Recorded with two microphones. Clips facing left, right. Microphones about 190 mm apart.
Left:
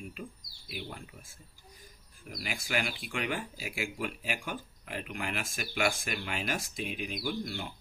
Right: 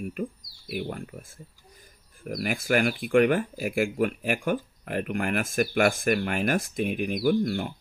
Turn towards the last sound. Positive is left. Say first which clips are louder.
# right 12 dB
turn(degrees=-55)  # may be behind; listen again after turning